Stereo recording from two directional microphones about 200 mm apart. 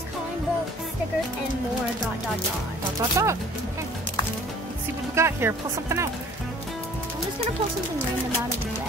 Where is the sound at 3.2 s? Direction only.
15° right (ahead or behind).